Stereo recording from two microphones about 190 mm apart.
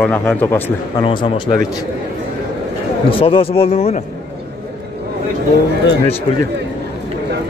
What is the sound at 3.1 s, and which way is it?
Speech, 30° left (ahead or behind).